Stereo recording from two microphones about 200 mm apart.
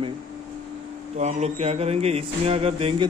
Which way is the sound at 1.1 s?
35° right (ahead or behind).